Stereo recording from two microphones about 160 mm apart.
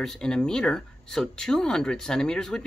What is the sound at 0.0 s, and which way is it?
Speech, 5° left (ahead or behind).